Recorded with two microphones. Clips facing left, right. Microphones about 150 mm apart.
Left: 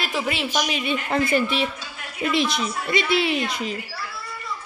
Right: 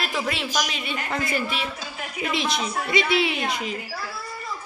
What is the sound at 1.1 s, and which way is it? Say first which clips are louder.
Speech: left 6 dB; 25° left (ahead or behind).